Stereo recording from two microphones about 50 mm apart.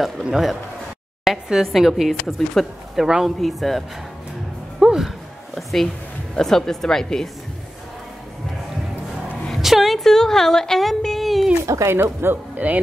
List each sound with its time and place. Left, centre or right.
0.2 s speech: centre
3.0 s speech: centre
4.7 s music: centre
5.5 s a woman's voice: centre
9.6 s a sound: centre
11.9 s speech: right
12.5 s speech: right